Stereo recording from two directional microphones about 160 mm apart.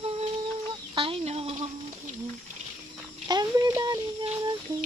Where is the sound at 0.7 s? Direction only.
35° right (ahead or behind).